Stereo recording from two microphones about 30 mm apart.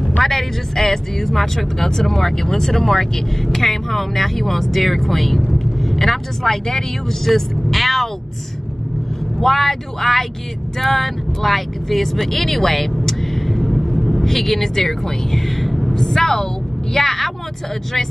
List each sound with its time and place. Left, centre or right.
0.2 s speech: centre
9.4 s speech: centre
15.9 s speech: centre